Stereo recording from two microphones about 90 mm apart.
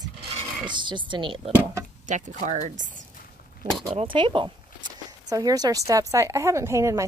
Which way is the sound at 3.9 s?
70° right (ahead or behind).